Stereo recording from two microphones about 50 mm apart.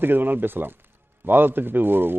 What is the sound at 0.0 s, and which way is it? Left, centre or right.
A man's voice, right.